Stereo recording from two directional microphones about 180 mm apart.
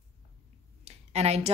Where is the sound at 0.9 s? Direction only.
35° right (ahead or behind).